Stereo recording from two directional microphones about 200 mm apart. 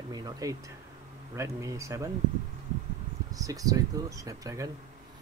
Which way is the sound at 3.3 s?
15° right (ahead or behind).